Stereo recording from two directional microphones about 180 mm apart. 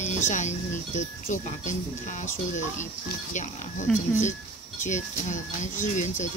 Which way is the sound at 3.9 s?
Centre (ahead or behind).